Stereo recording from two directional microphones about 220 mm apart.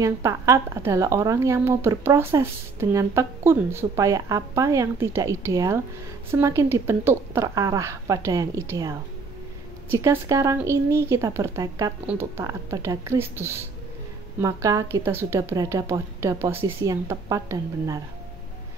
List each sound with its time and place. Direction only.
0.0 s a woman's voice: 15° right (ahead or behind)